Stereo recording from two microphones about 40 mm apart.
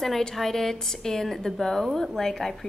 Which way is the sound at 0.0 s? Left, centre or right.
Centre.